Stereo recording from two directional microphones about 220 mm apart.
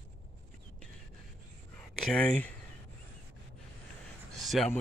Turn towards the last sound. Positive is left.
turn(degrees=0)  # may be behind; listen again after turning